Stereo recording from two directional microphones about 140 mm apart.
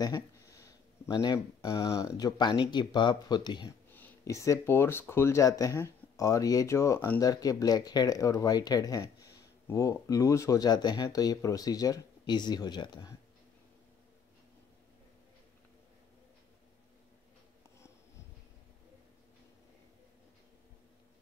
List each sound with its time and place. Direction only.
0.0 s speech: 25° left (ahead or behind)
3.9 s speech: 15° left (ahead or behind)